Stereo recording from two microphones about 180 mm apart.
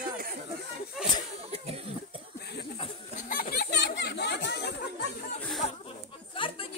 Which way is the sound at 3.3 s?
55° left (ahead or behind).